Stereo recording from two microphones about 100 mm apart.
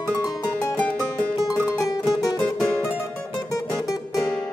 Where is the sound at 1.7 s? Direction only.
35° left (ahead or behind).